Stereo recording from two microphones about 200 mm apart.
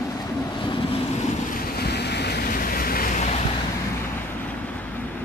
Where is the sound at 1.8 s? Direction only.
55° left (ahead or behind).